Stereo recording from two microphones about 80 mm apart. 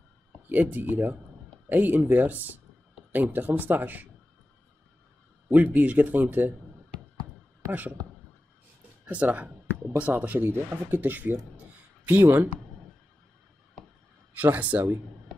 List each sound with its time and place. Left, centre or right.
0.5 s speech: right
5.5 s speech: right
9.0 s speech: centre
12.1 s speech: right
14.3 s speech: centre